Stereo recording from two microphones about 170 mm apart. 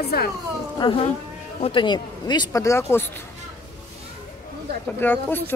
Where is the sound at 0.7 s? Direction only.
25° left (ahead or behind).